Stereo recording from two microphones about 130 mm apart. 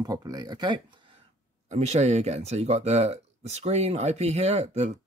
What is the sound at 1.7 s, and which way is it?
Speech, 60° right (ahead or behind).